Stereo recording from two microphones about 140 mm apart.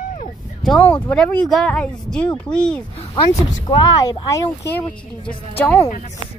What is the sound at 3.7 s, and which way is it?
Speech, 30° left (ahead or behind).